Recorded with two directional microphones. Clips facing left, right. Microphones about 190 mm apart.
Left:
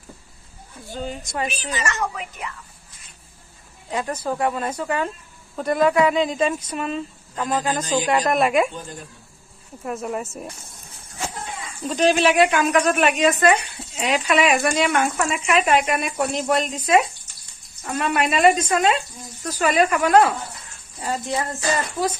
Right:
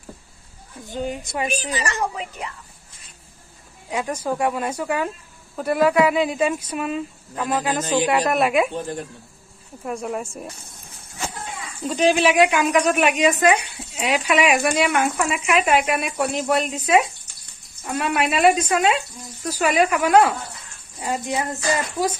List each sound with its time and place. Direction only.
0.8 s a woman's voice: 15° right (ahead or behind)
1.5 s a woman's voice: 40° right (ahead or behind)
3.9 s a woman's voice: 10° right (ahead or behind)
8.7 s speech: 65° right (ahead or behind)
9.8 s speech: centre (ahead or behind)
11.9 s a woman's voice: 10° right (ahead or behind)